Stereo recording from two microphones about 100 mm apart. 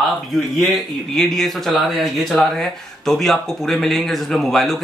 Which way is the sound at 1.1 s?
5° left (ahead or behind).